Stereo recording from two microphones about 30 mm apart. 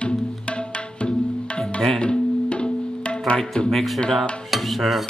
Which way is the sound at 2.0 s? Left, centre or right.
Left.